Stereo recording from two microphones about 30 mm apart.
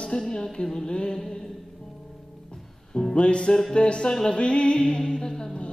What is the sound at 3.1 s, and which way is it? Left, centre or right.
Music, left.